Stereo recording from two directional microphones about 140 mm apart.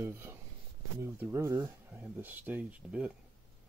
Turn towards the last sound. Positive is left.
turn(degrees=-10)  # may be behind; listen again after turning